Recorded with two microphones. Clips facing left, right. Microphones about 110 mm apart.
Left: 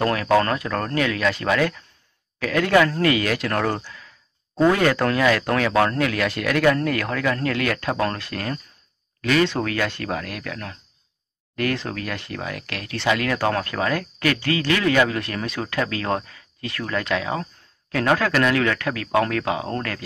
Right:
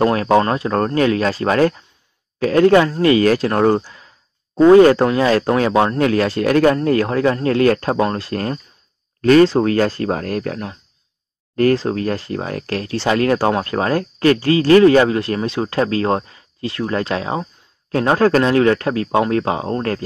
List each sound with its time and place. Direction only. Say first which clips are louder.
0.1 s speech: right 4 dB; 30° right (ahead or behind)